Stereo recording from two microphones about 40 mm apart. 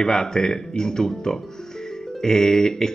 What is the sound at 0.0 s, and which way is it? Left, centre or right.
Speech, centre.